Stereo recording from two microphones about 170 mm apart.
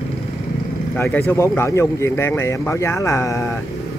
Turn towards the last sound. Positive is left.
turn(degrees=20)  # may be behind; listen again after turning